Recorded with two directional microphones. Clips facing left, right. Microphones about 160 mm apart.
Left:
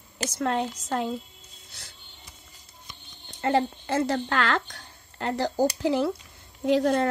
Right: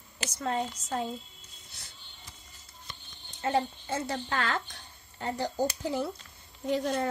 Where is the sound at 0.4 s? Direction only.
70° left (ahead or behind).